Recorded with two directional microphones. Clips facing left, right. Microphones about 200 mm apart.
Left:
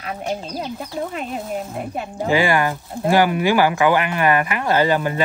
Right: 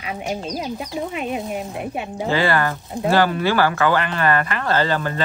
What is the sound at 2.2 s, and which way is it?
Speech, 15° left (ahead or behind).